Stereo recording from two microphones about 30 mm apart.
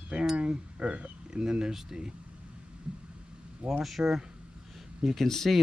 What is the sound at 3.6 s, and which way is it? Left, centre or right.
Speech, right.